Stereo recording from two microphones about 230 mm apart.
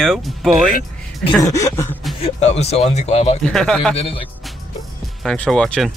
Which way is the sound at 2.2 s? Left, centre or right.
Left.